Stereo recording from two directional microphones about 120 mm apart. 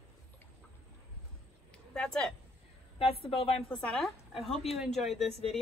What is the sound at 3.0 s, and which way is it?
Speech, 50° left (ahead or behind).